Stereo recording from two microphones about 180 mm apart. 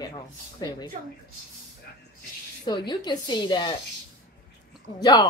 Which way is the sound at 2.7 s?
25° left (ahead or behind).